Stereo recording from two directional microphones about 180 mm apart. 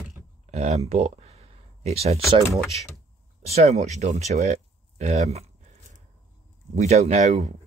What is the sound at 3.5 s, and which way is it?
Speech, 35° right (ahead or behind).